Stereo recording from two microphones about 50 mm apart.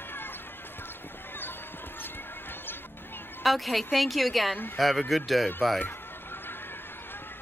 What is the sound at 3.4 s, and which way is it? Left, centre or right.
Speech, centre.